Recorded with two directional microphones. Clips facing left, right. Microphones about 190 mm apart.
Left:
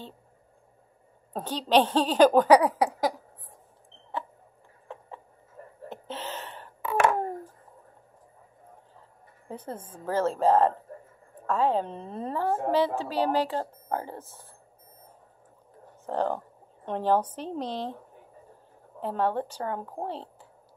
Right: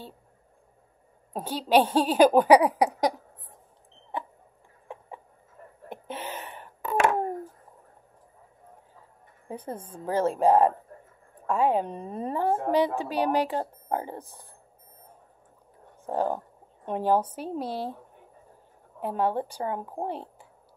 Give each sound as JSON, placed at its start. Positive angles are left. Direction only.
{"t": 1.3, "sound": "speech", "side_deg": -10}
{"t": 4.9, "sound": "a sound", "side_deg": -10}
{"t": 9.5, "sound": "speech", "side_deg": -15}
{"t": 16.1, "sound": "speech", "side_deg": -10}
{"t": 18.9, "sound": "speech", "side_deg": -10}